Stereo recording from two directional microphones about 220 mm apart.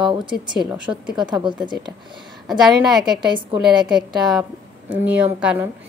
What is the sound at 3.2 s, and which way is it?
Speech, 20° right (ahead or behind).